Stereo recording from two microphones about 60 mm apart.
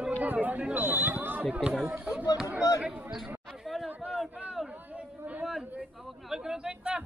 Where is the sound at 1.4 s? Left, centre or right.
Centre.